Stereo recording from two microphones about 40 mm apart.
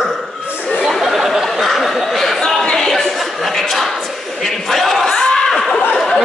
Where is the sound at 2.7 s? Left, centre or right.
Centre.